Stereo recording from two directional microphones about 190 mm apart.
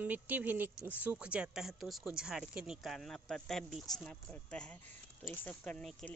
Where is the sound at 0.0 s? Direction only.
10° right (ahead or behind).